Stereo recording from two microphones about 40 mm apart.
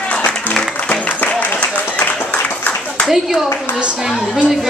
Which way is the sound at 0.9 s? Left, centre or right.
Left.